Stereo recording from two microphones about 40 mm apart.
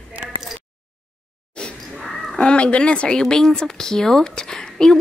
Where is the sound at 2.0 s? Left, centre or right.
Centre.